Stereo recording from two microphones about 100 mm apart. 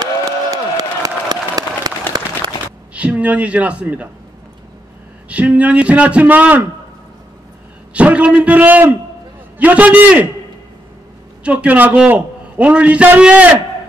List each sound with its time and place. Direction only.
0.0 s applause: 40° right (ahead or behind)
2.9 s a woman's voice: 15° right (ahead or behind)
5.3 s a man's voice: 15° right (ahead or behind)
7.9 s a man's voice: 10° right (ahead or behind)
11.4 s a man's voice: 15° right (ahead or behind)